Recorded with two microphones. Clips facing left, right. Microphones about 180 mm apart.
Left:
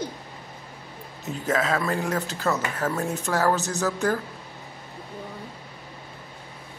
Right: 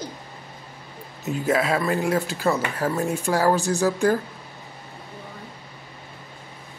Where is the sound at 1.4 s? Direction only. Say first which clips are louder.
Right 2 dB; 10° right (ahead or behind).